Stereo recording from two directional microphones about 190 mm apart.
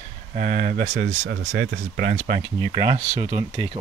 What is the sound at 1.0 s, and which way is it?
Speech, 70° right (ahead or behind).